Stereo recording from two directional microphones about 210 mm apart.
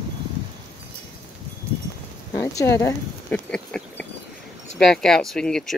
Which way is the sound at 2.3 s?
15° left (ahead or behind).